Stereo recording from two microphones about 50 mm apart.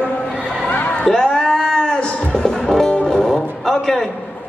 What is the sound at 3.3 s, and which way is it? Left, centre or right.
Vehicle, centre.